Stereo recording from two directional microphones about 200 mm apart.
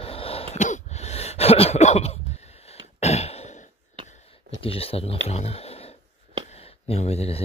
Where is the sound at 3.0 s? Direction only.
30° left (ahead or behind).